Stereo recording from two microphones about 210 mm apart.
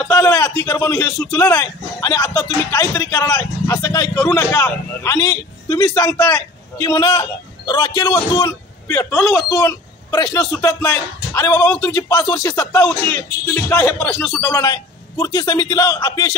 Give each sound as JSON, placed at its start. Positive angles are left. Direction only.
{"t": 0.0, "sound": "a man's voice", "side_deg": 15}